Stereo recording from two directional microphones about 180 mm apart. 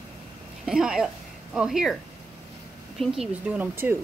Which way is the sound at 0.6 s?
5° right (ahead or behind).